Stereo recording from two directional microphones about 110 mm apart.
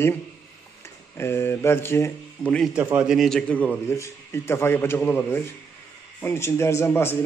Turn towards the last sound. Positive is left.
turn(degrees=20)  # may be behind; listen again after turning